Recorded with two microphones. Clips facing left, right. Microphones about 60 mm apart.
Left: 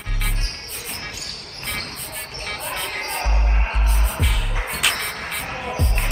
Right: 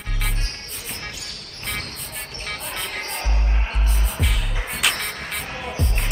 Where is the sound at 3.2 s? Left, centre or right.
Left.